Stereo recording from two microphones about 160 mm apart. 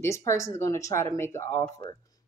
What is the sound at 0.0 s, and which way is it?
A woman's voice, 20° left (ahead or behind).